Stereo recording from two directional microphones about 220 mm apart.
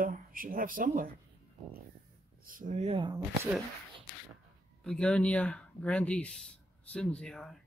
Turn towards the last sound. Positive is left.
turn(degrees=0)  # may be behind; listen again after turning